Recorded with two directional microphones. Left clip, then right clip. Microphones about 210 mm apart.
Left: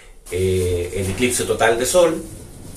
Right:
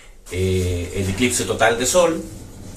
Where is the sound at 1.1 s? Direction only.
Centre (ahead or behind).